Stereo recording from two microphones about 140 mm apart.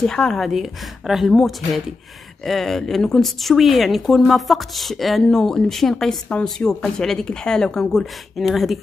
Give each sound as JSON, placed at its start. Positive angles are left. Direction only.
{"t": 0.0, "sound": "speech", "side_deg": 5}